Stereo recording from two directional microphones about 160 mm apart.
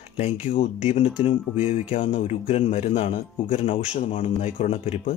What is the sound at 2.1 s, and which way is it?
Speech, 40° left (ahead or behind).